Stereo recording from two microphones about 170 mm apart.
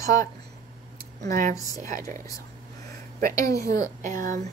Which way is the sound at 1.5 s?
20° left (ahead or behind).